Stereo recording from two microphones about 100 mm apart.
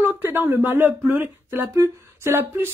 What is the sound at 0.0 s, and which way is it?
Speech, 20° right (ahead or behind).